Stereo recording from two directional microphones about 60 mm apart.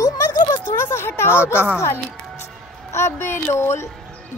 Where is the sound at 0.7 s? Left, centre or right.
Left.